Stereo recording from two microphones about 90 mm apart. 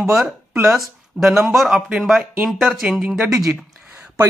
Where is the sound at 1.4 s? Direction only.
5° right (ahead or behind).